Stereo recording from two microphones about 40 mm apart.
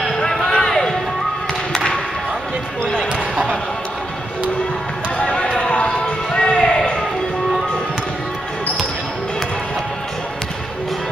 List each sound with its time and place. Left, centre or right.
0.3 s basketball bounce: centre
1.7 s thump: centre
5.2 s basketball bounce: left